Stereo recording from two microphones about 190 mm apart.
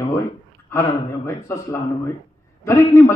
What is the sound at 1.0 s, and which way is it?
Speech, 15° left (ahead or behind).